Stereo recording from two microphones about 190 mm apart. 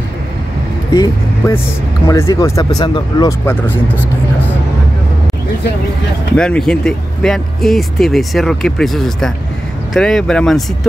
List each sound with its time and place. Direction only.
0.9 s speech: 15° left (ahead or behind)
6.3 s speech: 5° left (ahead or behind)